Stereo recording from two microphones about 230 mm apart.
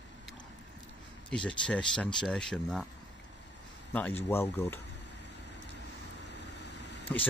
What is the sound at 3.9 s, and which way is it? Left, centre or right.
Speech, centre.